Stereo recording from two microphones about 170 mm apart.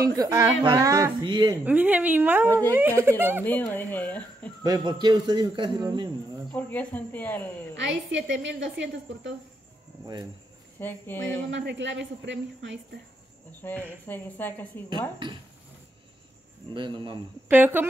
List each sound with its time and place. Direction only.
0.0 s a woman's voice: 20° right (ahead or behind)
1.6 s a woman's voice: 10° right (ahead or behind)
3.4 s speech: 10° left (ahead or behind)
4.6 s a woman's voice: 25° right (ahead or behind)
6.5 s speech: 10° left (ahead or behind)
7.7 s a woman's voice: 90° right
10.8 s speech: 10° left (ahead or behind)
11.5 s a woman's voice: 90° right
13.6 s speech: 10° left (ahead or behind)
14.9 s a woman's voice: 30° right (ahead or behind)
16.7 s a woman's voice: 30° right (ahead or behind)
17.5 s a woman's voice: 10° right (ahead or behind)